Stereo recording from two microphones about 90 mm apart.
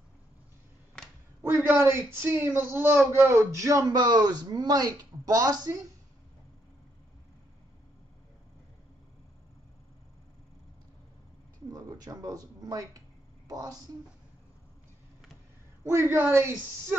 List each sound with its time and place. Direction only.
1.4 s a man's voice: 25° right (ahead or behind); by 5.8 s 45° right (ahead or behind)
11.7 s speech: 40° right (ahead or behind)
15.8 s a woman's voice: 30° right (ahead or behind)